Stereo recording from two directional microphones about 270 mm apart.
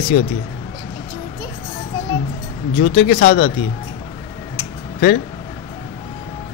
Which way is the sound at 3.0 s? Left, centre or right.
Left.